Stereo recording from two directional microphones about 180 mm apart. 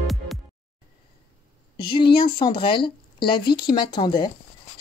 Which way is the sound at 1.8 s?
25° left (ahead or behind).